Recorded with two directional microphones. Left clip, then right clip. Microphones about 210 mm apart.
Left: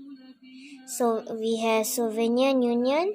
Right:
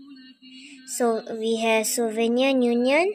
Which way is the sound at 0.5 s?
30° left (ahead or behind).